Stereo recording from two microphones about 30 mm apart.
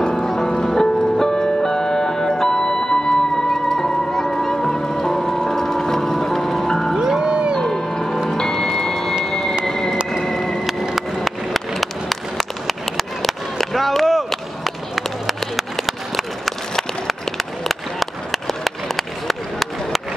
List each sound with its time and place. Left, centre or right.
0.0 s music: centre
7.0 s music: right
7.6 s music: centre
8.4 s vehicle: centre
9.2 s a sound: centre
9.7 s vehicle: centre
10.2 s music: centre
11.0 s a sound: centre